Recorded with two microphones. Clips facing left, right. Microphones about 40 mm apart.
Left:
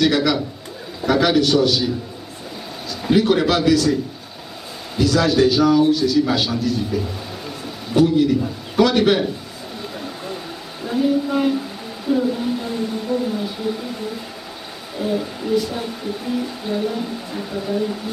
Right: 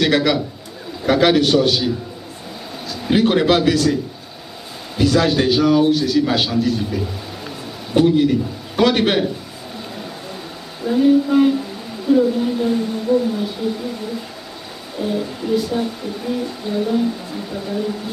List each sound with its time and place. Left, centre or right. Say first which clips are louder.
0.0 s a man's voice: right 1 dB; right
3.2 s a man's voice: right 2 dB; right
4.9 s a man's voice: right 1 dB; right
7.9 s a man's voice: right 1 dB; right
10.8 s speech: right 5 dB; centre
15.0 s speech: even; centre